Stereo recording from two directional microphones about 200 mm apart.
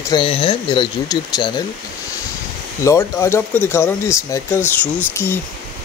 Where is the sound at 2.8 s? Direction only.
15° left (ahead or behind).